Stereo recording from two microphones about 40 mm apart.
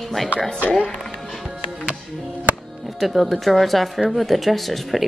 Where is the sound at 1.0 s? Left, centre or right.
Centre.